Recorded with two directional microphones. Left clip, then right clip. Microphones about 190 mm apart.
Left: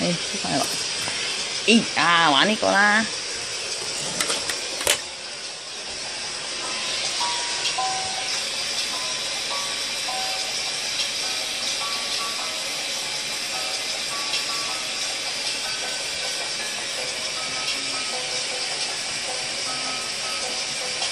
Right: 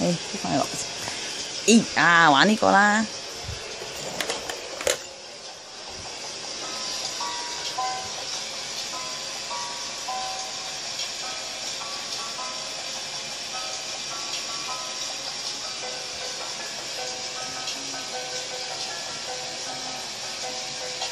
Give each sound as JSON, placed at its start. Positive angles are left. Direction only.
{"t": 0.0, "sound": "speech", "side_deg": -25}
{"t": 1.7, "sound": "speech", "side_deg": -40}
{"t": 2.7, "sound": "speech", "side_deg": -25}